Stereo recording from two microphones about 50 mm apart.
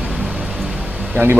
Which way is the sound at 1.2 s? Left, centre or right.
Right.